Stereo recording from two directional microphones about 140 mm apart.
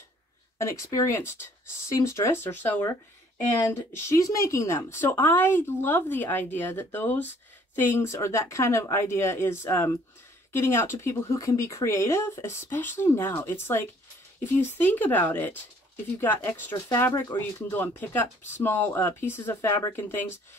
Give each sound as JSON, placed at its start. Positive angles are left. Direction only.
{"t": 0.6, "sound": "speech", "side_deg": 20}
{"t": 17.1, "sound": "speech", "side_deg": 25}
{"t": 17.4, "sound": "speech", "side_deg": 15}